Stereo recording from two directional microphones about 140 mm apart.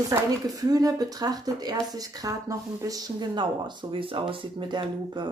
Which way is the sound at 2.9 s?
30° right (ahead or behind).